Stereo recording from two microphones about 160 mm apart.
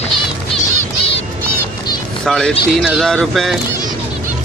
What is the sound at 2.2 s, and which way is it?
Speech, 5° left (ahead or behind).